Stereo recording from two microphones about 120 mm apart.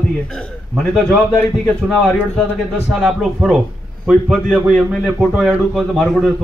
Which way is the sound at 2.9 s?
5° right (ahead or behind).